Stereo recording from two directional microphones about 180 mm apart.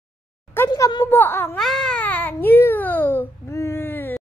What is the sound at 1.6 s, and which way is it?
Babbling, centre (ahead or behind).